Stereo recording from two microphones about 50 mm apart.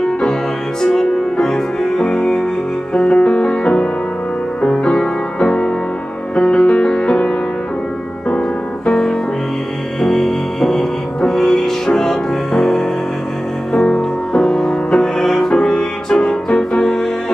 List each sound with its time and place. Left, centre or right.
0.2 s music: centre
8.4 s music: centre